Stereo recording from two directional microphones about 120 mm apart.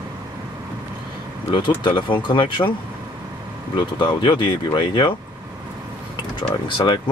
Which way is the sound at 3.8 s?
40° left (ahead or behind).